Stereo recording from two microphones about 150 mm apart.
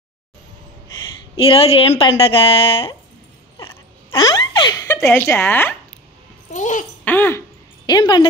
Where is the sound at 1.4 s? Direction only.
40° left (ahead or behind).